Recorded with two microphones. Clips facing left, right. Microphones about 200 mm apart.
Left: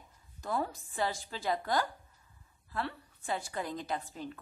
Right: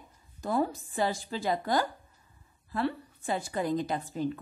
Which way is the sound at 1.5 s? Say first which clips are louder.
Right 3 dB; 20° right (ahead or behind).